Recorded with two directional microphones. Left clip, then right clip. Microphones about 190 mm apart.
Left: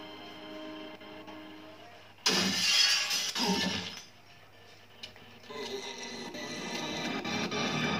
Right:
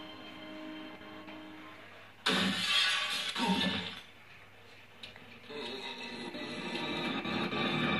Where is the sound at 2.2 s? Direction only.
15° left (ahead or behind).